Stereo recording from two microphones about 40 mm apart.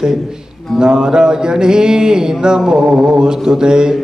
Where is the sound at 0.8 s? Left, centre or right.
Centre.